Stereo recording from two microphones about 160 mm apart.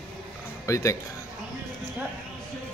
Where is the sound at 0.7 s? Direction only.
20° left (ahead or behind).